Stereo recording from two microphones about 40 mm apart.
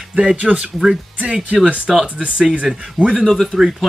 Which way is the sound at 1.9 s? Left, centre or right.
Centre.